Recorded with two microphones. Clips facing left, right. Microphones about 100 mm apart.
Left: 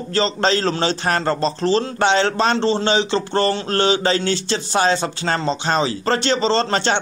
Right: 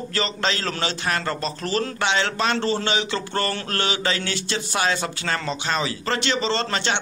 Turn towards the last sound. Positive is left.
turn(degrees=35)  # may be behind; listen again after turning